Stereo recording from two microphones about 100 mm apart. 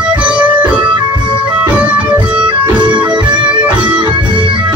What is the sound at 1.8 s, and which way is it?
Music, 15° right (ahead or behind).